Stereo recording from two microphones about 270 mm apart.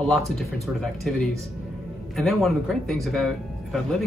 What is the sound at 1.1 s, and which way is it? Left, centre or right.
Speech, centre.